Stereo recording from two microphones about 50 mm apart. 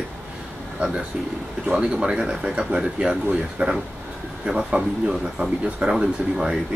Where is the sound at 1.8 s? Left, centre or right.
Centre.